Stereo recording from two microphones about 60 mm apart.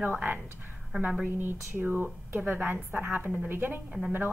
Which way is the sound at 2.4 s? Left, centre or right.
Right.